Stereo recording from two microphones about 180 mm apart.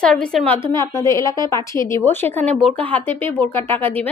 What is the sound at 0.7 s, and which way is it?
Speech, 15° left (ahead or behind).